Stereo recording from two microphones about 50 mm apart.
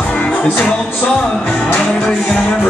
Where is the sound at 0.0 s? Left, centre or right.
Left.